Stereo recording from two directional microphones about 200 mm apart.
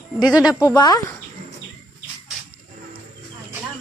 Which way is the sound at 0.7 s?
20° left (ahead or behind).